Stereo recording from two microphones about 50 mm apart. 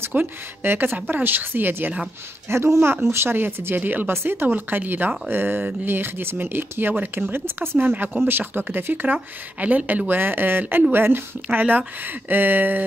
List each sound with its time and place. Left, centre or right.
0.1 s speech: right
2.5 s speech: right
4.1 s speech: right
4.5 s speech: right
7.0 s speech: right
7.3 s speech: right
7.9 s speech: right
8.2 s speech: right